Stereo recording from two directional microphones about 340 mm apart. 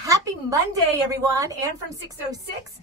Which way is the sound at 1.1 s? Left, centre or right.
Centre.